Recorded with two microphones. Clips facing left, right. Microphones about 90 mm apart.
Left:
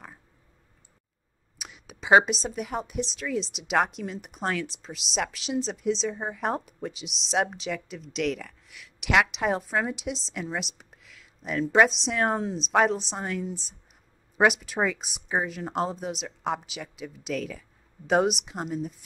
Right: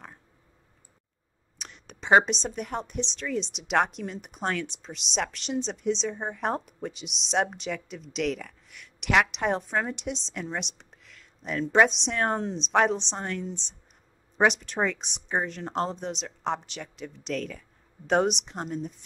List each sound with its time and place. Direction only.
1.6 s a woman's voice: 5° left (ahead or behind)